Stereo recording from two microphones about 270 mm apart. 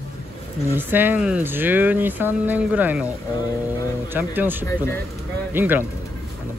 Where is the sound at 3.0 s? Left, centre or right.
Centre.